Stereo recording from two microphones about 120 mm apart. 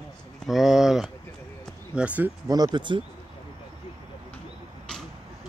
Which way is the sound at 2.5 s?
35° right (ahead or behind).